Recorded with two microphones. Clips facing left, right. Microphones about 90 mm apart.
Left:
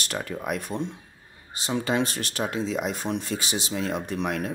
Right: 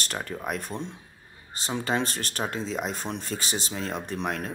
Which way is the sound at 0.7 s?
25° left (ahead or behind).